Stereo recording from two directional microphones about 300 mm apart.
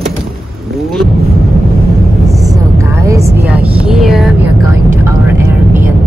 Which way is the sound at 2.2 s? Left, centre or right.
Centre.